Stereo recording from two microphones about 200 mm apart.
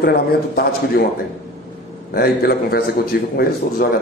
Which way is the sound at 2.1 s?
50° left (ahead or behind).